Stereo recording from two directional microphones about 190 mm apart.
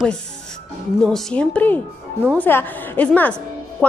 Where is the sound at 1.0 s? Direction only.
5° left (ahead or behind).